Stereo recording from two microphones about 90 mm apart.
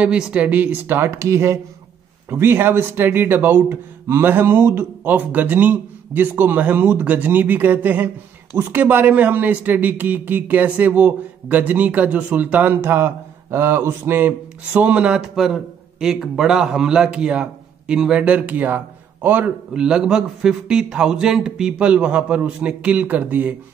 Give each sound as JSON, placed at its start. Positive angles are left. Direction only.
{"t": 0.0, "sound": "a man's voice", "side_deg": -15}
{"t": 19.7, "sound": "a man's voice", "side_deg": -10}